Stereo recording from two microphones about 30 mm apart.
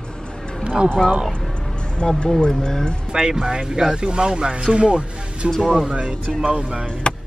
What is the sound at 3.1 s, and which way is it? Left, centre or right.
Speech, right.